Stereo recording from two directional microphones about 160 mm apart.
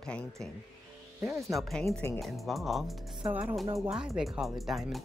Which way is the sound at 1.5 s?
Centre (ahead or behind).